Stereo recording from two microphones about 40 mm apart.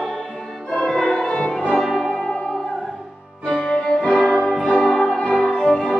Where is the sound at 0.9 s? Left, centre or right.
Centre.